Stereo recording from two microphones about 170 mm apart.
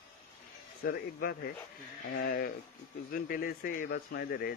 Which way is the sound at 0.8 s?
65° left (ahead or behind).